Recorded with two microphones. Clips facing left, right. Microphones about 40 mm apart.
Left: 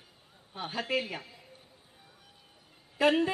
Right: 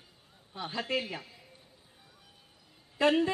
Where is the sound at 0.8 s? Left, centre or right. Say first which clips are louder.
Left 1 dB; centre.